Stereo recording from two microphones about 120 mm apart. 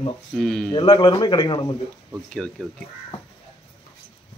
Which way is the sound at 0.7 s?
40° left (ahead or behind).